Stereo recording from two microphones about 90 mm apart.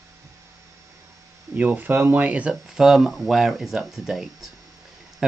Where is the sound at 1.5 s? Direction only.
20° right (ahead or behind).